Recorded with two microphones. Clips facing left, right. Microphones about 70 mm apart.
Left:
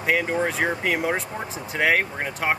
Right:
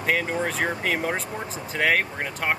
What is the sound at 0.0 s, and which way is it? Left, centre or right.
Speech, centre.